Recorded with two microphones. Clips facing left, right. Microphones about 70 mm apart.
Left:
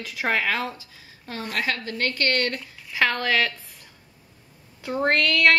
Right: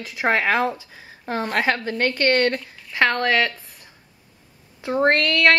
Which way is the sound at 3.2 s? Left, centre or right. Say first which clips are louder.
Right 3 dB; centre.